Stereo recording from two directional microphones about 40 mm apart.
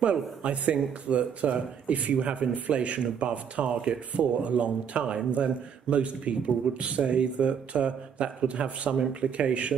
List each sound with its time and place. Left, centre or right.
0.0 s speech: right